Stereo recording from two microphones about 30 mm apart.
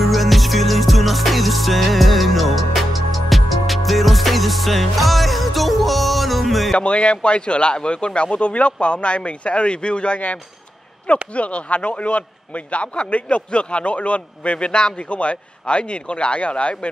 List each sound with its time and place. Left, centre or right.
0.0 s music: centre
6.8 s a man's voice: left
11.3 s a man's voice: left
15.0 s a man's voice: left